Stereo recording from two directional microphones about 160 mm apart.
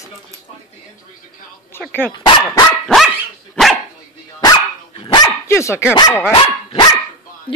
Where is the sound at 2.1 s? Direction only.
25° left (ahead or behind).